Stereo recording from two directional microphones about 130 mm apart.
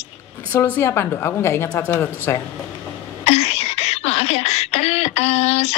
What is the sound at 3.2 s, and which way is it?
Speech, 55° left (ahead or behind).